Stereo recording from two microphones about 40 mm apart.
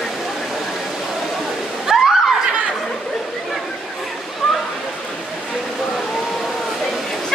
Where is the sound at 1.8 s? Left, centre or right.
Centre.